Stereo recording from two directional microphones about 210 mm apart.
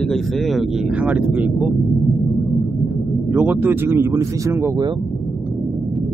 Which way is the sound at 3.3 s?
10° right (ahead or behind).